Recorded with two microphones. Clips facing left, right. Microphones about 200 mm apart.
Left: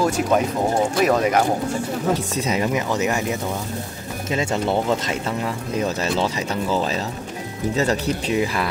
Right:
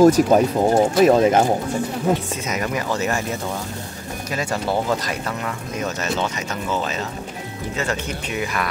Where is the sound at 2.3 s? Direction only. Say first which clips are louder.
Left 4 dB; 30° left (ahead or behind).